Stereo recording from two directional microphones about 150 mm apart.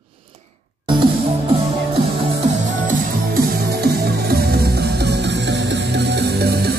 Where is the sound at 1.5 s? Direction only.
35° right (ahead or behind).